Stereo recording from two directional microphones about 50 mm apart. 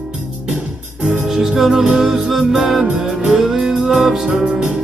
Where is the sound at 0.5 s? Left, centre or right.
Right.